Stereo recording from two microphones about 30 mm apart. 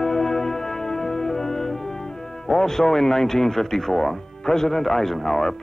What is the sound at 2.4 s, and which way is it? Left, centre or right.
Speech, centre.